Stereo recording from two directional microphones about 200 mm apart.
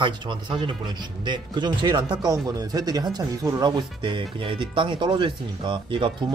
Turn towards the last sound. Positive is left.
turn(degrees=-25)  # may be behind; listen again after turning